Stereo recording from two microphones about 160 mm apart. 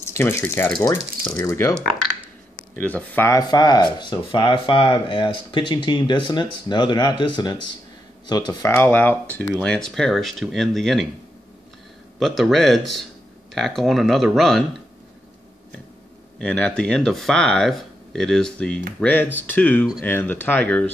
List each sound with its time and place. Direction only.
0.2 s speech: 15° left (ahead or behind)
0.7 s speech: 25° left (ahead or behind)
2.8 s speech: 10° left (ahead or behind)
8.7 s speech: 15° left (ahead or behind)
12.2 s speech: centre (ahead or behind)
16.3 s speech: 5° left (ahead or behind)